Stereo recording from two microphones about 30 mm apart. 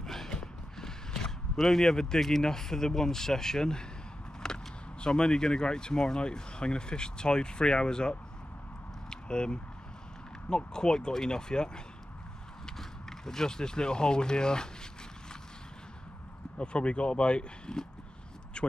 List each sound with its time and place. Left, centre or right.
0.0 s a sound: centre
0.3 s creak: left
1.6 s speech: centre
1.9 s speech: centre
4.4 s vehicle: left
5.0 s speech: left
9.1 s a sound: left
10.5 s speech: left
16.5 s speech: left
18.6 s a sound: left